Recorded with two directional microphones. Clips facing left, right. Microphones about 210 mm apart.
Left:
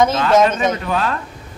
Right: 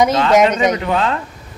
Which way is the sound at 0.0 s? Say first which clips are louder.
Right 1 dB; 20° right (ahead or behind).